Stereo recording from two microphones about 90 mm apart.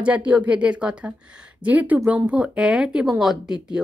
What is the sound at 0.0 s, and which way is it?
Speech, 15° right (ahead or behind).